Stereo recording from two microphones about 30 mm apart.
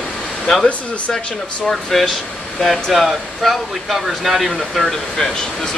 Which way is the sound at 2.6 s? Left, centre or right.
Centre.